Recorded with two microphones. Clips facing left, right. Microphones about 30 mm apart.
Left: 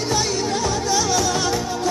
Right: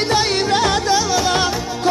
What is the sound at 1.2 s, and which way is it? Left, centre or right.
Music, right.